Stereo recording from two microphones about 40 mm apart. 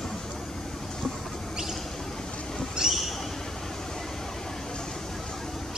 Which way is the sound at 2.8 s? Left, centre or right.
Centre.